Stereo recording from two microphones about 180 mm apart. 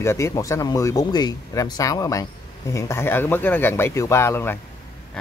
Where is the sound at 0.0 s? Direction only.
15° left (ahead or behind).